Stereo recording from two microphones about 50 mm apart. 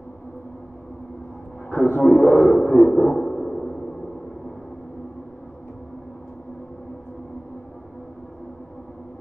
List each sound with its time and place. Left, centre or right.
1.7 s speech: left
3.3 s sonar: centre